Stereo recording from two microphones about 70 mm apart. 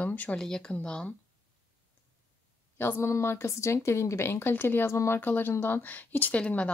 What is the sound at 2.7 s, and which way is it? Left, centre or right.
Speech, left.